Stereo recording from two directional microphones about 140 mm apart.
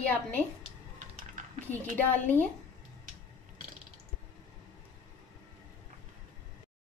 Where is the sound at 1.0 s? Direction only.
65° right (ahead or behind).